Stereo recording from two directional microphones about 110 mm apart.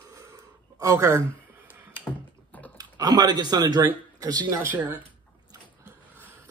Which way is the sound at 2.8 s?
35° right (ahead or behind).